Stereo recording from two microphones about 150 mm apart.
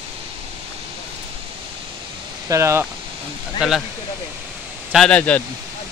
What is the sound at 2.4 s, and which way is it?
Speech, 20° right (ahead or behind).